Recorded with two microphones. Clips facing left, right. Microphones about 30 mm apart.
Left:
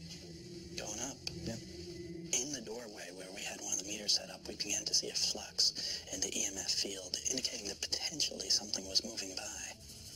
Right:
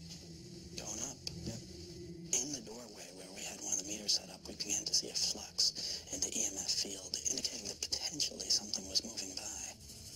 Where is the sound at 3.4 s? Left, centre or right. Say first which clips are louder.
Even; left.